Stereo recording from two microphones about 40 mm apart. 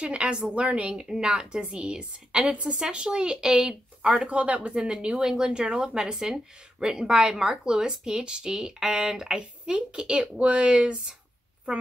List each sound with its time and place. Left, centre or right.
0.0 s speech: right
0.9 s speech: centre
4.3 s speech: right